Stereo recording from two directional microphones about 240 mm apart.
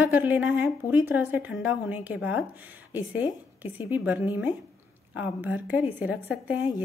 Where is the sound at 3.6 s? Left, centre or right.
Centre.